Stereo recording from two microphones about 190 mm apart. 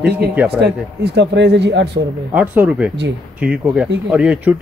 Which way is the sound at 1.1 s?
65° right (ahead or behind).